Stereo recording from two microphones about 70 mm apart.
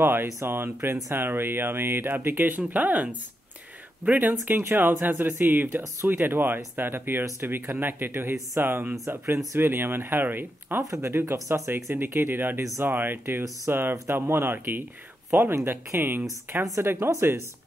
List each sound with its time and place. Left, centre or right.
0.0 s speech: right
10.8 s speech: right